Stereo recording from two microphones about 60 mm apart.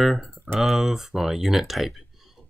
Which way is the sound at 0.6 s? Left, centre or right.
Centre.